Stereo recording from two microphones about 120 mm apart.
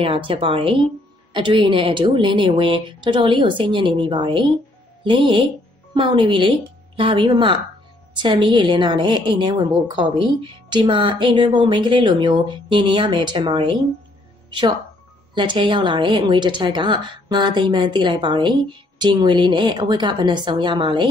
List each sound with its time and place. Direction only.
0.0 s a woman's voice: 45° right (ahead or behind)
15.3 s a woman's voice: 40° right (ahead or behind)